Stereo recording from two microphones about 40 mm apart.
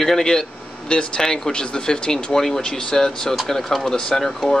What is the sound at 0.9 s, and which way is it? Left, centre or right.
Speech, left.